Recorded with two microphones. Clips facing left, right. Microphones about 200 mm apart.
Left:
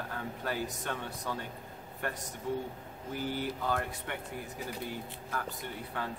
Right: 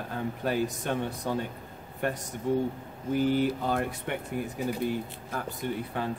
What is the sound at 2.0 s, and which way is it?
Speech, 20° right (ahead or behind).